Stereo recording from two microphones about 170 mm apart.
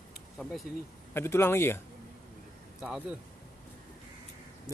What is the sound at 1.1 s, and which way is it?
Speech, 15° left (ahead or behind).